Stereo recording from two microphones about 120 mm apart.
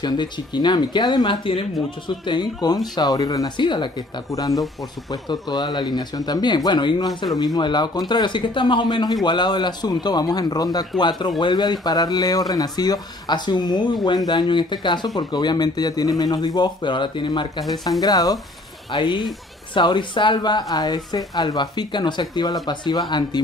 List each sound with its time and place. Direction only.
0.0 s speech: 40° left (ahead or behind)
4.3 s speech: 30° left (ahead or behind)